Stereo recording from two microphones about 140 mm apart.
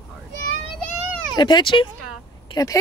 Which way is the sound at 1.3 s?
30° left (ahead or behind).